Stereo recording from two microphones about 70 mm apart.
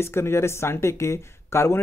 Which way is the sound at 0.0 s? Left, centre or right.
Left.